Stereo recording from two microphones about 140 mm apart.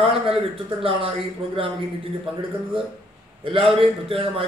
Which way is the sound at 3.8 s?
40° right (ahead or behind).